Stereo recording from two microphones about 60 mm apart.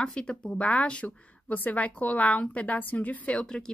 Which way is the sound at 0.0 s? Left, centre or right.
Centre.